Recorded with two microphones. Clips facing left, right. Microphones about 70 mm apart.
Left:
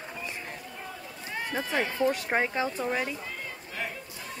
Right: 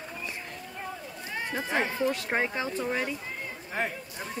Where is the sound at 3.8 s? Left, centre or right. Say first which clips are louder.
Right 5 dB; right.